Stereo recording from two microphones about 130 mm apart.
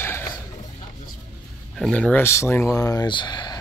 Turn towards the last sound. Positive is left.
turn(degrees=35)  # may be behind; listen again after turning